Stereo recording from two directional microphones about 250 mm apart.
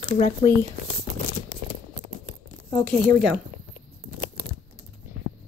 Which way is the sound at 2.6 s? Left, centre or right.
Centre.